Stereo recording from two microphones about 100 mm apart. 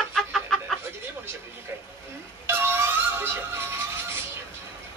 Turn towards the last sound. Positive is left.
turn(degrees=-25)  # may be behind; listen again after turning